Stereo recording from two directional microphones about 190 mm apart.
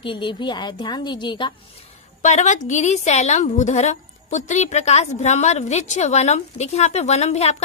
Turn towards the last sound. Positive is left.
turn(degrees=35)  # may be behind; listen again after turning